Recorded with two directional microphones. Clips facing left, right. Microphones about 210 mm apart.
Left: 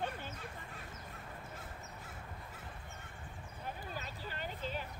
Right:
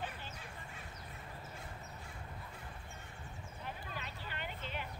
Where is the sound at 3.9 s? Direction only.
40° left (ahead or behind).